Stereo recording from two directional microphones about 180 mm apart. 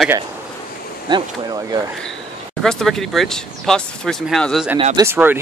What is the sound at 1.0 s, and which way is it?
Speech, 25° right (ahead or behind).